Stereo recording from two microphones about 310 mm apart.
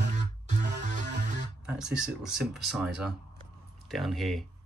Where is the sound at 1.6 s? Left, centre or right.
Centre.